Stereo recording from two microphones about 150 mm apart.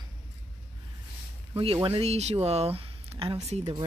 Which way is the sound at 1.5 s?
35° right (ahead or behind).